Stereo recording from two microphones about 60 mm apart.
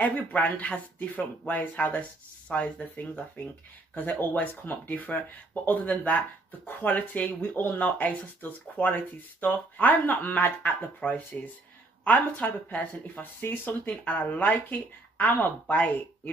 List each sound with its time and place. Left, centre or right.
0.0 s speech: left